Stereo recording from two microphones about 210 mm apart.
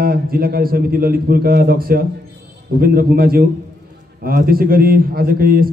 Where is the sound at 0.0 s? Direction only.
45° right (ahead or behind).